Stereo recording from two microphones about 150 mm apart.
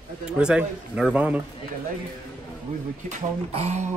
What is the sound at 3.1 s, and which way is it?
Speech, 45° right (ahead or behind).